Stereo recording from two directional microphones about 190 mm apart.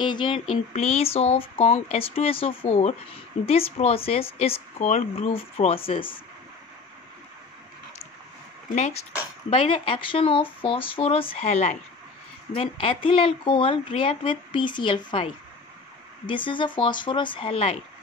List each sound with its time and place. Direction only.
0.0 s speech: 25° left (ahead or behind)
9.5 s speech: 30° left (ahead or behind)